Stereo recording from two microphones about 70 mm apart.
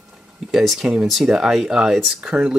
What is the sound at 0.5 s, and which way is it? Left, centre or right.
Speech, centre.